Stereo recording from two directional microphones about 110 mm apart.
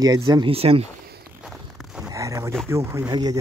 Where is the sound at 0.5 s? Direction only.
65° right (ahead or behind).